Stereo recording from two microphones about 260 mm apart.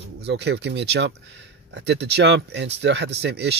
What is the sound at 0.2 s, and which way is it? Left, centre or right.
Speech, right.